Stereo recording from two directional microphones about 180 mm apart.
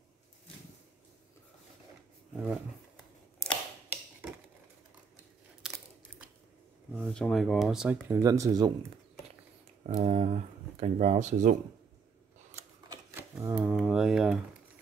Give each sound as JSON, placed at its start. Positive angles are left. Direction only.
{"t": 2.4, "sound": "camera", "side_deg": 0}
{"t": 5.6, "sound": "crunch", "side_deg": -5}
{"t": 7.0, "sound": "speech", "side_deg": 5}
{"t": 8.1, "sound": "speech", "side_deg": -15}
{"t": 9.8, "sound": "speech", "side_deg": -40}
{"t": 13.1, "sound": "speech", "side_deg": -10}